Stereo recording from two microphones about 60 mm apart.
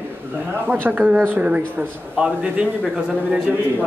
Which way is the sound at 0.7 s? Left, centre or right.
Right.